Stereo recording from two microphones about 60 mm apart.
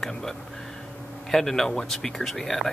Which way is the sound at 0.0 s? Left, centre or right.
Centre.